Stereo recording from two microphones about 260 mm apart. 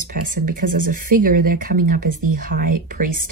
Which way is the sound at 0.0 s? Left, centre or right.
Right.